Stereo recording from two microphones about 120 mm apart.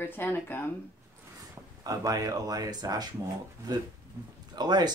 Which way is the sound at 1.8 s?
30° right (ahead or behind).